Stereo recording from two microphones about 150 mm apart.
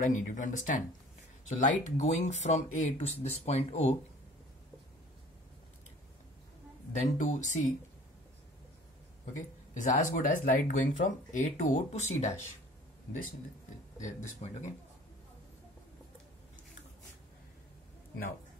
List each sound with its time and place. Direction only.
0.1 s speech: 55° left (ahead or behind)
6.9 s speech: 50° left (ahead or behind)
9.8 s speech: 60° left (ahead or behind)
13.9 s speech: 55° left (ahead or behind)